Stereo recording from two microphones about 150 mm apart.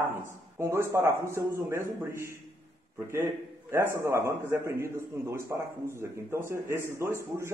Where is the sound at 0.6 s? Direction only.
20° right (ahead or behind).